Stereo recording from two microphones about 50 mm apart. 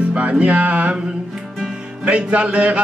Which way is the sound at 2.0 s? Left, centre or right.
Right.